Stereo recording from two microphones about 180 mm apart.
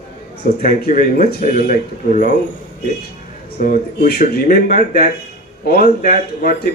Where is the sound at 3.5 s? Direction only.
50° left (ahead or behind).